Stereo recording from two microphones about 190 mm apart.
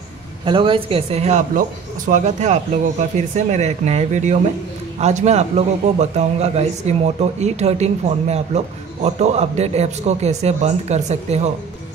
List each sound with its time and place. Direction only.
0.5 s speech: 25° right (ahead or behind)